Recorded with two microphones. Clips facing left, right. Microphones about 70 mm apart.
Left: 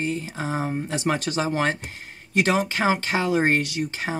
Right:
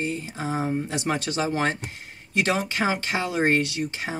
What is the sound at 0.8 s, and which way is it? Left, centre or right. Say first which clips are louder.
Speech: left 2 dB; left.